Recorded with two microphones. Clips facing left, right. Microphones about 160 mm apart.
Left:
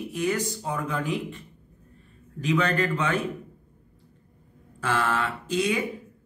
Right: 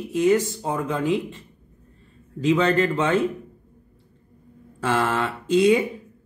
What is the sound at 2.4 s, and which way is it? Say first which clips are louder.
Speech: right 5 dB; 25° right (ahead or behind).